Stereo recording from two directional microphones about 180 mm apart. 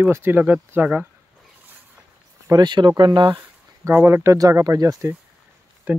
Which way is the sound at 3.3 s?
15° right (ahead or behind).